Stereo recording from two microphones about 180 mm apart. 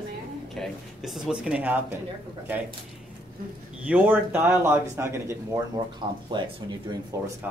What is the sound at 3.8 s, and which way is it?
Speech, 10° right (ahead or behind).